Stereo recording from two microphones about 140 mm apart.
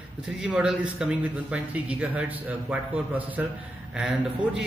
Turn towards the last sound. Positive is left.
turn(degrees=-5)  # may be behind; listen again after turning